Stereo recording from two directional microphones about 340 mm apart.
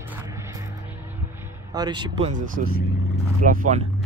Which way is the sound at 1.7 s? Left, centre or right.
Centre.